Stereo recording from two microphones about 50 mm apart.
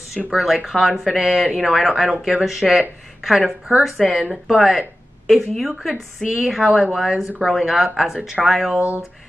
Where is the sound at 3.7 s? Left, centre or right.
Right.